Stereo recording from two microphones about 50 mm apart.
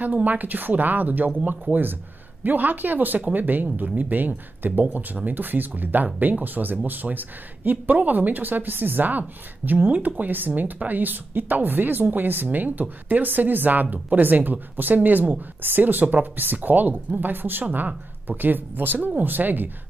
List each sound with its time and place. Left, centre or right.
0.0 s speech: right